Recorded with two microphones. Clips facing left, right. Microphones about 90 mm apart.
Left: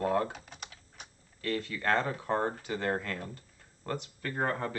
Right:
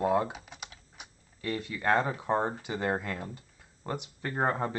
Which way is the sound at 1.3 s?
15° right (ahead or behind).